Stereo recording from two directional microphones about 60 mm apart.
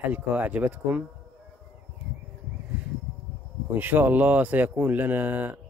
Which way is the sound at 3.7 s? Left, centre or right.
Right.